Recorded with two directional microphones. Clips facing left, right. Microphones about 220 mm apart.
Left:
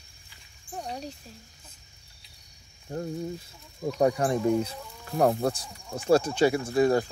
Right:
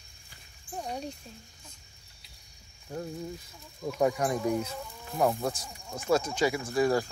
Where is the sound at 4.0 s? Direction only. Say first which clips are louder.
Left 3 dB; 30° left (ahead or behind).